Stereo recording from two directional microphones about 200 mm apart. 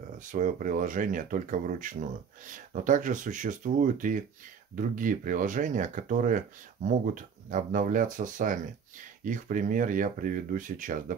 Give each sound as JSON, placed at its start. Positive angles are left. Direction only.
{"t": 0.3, "sound": "speech", "side_deg": -40}